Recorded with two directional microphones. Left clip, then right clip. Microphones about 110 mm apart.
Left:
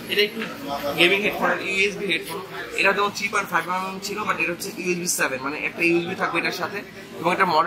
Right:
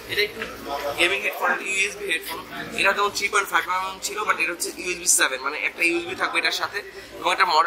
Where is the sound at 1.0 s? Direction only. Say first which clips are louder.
Left 3 dB; 20° right (ahead or behind).